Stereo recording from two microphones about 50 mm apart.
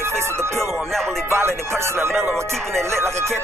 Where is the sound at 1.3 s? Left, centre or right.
Right.